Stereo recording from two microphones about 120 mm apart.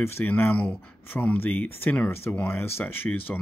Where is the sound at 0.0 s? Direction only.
15° left (ahead or behind).